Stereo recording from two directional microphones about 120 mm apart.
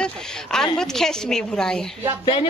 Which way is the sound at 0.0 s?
5° left (ahead or behind).